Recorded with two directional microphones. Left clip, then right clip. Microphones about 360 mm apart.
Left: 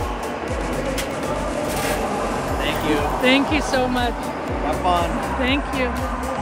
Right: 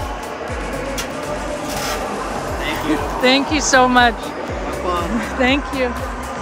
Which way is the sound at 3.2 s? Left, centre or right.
Centre.